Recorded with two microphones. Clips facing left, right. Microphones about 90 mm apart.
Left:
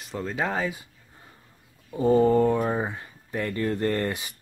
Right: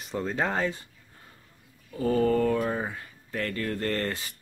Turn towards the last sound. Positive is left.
turn(degrees=15)  # may be behind; listen again after turning